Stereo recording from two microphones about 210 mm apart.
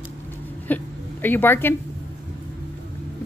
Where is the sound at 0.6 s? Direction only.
10° left (ahead or behind).